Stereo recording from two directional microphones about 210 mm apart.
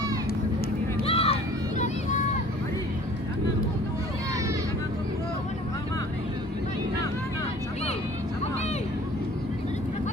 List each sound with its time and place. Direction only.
1.0 s crowd: 30° left (ahead or behind)